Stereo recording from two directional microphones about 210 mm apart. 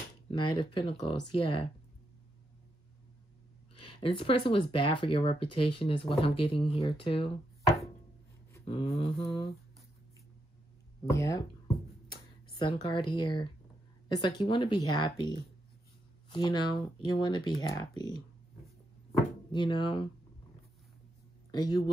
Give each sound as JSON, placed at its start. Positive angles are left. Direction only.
{"t": 0.3, "sound": "a sound", "side_deg": 25}
{"t": 0.7, "sound": "speech", "side_deg": 25}
{"t": 3.7, "sound": "a sound", "side_deg": 90}
{"t": 4.0, "sound": "speech", "side_deg": 25}
{"t": 8.6, "sound": "speech", "side_deg": 30}
{"t": 11.1, "sound": "speech", "side_deg": 15}
{"t": 12.6, "sound": "speech", "side_deg": 25}
{"t": 19.5, "sound": "speech", "side_deg": 20}
{"t": 21.5, "sound": "speech", "side_deg": 20}